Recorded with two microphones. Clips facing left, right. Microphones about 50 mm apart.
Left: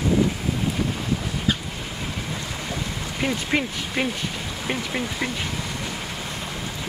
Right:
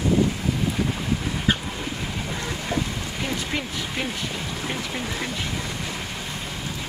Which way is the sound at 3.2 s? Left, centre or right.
Centre.